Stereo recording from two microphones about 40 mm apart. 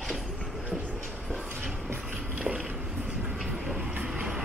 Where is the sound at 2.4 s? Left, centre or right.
Right.